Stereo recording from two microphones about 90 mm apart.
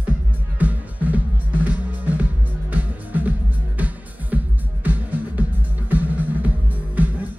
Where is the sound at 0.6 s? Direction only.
15° right (ahead or behind).